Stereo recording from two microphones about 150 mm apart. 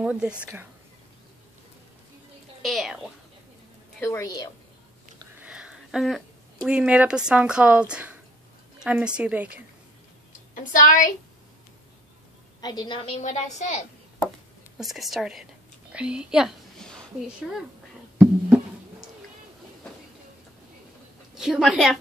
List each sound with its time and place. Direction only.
0.0 s a woman's voice: 5° right (ahead or behind)
2.6 s a woman's voice: centre (ahead or behind)
4.0 s a woman's voice: 20° left (ahead or behind)
5.4 s speech: 5° right (ahead or behind)
10.5 s a woman's voice: 60° left (ahead or behind)
12.5 s a woman's voice: 30° left (ahead or behind); by 13.8 s 50° left (ahead or behind)
14.8 s a woman's voice: centre (ahead or behind)
18.1 s music: 15° right (ahead or behind)
21.4 s a woman's voice: 5° right (ahead or behind)